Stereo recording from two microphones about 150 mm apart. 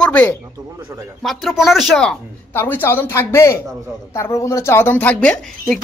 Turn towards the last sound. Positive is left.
turn(degrees=10)  # may be behind; listen again after turning